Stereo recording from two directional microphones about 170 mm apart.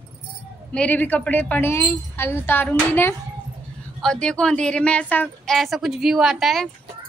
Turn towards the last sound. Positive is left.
turn(degrees=0)  # may be behind; listen again after turning